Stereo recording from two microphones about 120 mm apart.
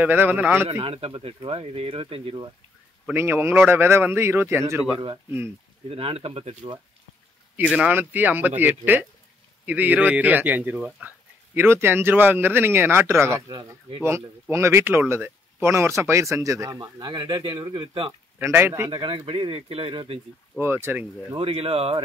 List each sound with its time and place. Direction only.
0.0 s speech: 15° right (ahead or behind)
0.8 s speech: 50° right (ahead or behind)
3.1 s speech: 15° right (ahead or behind)
5.9 s speech: 55° right (ahead or behind)
7.5 s speech: 10° right (ahead or behind)
13.5 s speech: 40° right (ahead or behind)
14.0 s speech: 25° right (ahead or behind)
16.8 s speech: 40° right (ahead or behind)
18.4 s speech: 20° right (ahead or behind)
18.9 s speech: 45° right (ahead or behind)
20.5 s speech: 20° right (ahead or behind)
21.4 s speech: 50° right (ahead or behind)